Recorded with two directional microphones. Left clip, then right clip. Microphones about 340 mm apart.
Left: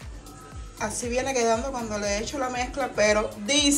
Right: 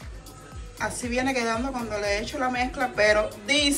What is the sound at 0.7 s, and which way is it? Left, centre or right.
A woman's voice, centre.